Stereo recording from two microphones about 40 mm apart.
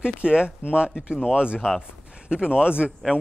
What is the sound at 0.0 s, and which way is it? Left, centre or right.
A man's voice, right.